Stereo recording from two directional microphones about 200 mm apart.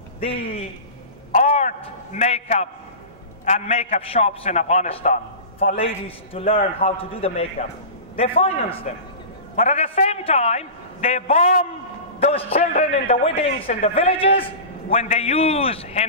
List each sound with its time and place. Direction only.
0.2 s a man's voice: 30° left (ahead or behind)
1.3 s a sound: 35° left (ahead or behind)
3.4 s a man's voice: 35° left (ahead or behind)